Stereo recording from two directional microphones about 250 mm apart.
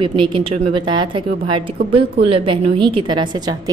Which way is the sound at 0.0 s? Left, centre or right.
Right.